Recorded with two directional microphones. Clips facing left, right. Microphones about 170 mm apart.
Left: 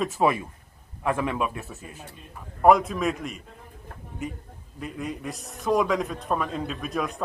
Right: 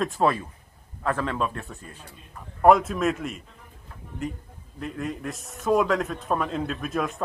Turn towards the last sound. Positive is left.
turn(degrees=0)  # may be behind; listen again after turning